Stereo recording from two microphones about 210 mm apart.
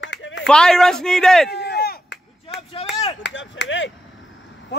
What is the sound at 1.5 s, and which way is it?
Chop, 50° left (ahead or behind).